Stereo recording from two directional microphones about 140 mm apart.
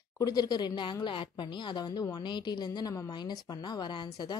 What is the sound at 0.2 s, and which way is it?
Speech, 30° left (ahead or behind).